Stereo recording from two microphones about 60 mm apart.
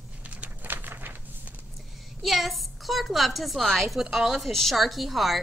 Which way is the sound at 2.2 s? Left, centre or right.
Centre.